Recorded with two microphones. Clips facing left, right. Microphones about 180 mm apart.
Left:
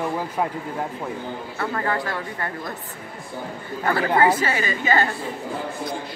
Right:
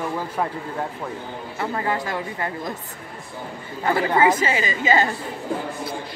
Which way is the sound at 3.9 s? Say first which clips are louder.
Right 1 dB; 15° right (ahead or behind).